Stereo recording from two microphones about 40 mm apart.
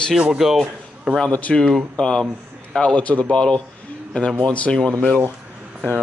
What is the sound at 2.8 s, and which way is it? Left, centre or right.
Speech, left.